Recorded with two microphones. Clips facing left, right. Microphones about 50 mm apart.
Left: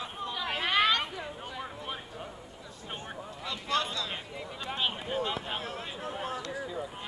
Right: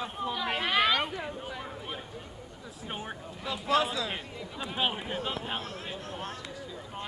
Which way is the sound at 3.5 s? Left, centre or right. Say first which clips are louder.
Right 4 dB; centre.